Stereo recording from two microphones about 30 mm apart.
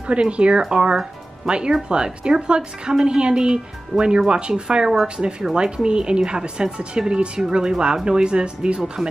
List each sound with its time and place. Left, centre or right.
0.0 s a woman's voice: right
0.6 s a woman's voice: right